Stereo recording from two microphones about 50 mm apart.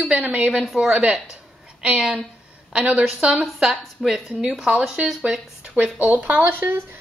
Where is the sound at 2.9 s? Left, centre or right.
Centre.